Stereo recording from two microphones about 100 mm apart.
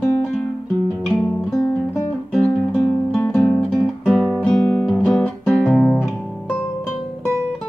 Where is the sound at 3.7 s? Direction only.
Centre (ahead or behind).